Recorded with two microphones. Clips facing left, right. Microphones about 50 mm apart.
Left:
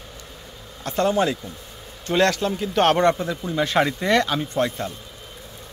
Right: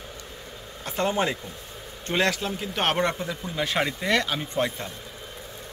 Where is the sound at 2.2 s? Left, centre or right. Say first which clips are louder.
Left 5 dB; centre.